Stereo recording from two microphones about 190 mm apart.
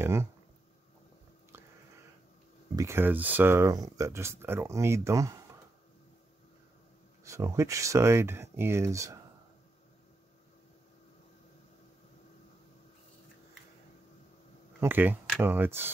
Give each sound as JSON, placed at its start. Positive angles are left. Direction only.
{"t": 0.0, "sound": "speech", "side_deg": -15}
{"t": 2.7, "sound": "speech", "side_deg": -15}
{"t": 7.2, "sound": "speech", "side_deg": -15}
{"t": 14.8, "sound": "speech", "side_deg": -10}